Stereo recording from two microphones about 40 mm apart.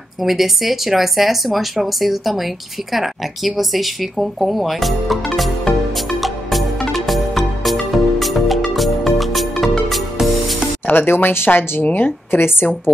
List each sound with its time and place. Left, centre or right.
0.2 s speech: centre
1.9 s a sound: centre
10.9 s speech: left
11.8 s speech: left